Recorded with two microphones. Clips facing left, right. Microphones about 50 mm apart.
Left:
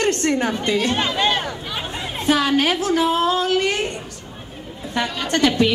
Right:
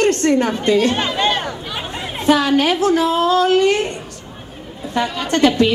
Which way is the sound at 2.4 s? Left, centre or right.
Left.